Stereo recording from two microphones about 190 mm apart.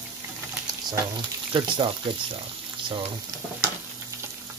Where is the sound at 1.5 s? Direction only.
25° right (ahead or behind).